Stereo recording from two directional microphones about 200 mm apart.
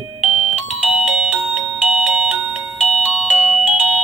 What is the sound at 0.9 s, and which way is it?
Music, 5° right (ahead or behind).